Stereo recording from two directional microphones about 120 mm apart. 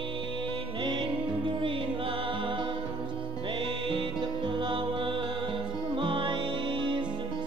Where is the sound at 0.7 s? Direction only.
40° right (ahead or behind).